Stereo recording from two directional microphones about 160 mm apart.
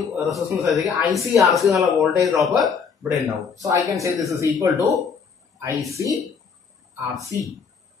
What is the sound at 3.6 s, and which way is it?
A woman's voice, 20° right (ahead or behind).